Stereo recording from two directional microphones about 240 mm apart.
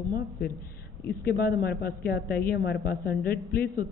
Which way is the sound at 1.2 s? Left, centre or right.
Left.